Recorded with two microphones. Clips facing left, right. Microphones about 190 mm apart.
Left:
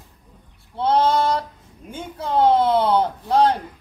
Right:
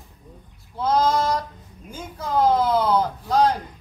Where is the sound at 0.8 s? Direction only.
30° left (ahead or behind).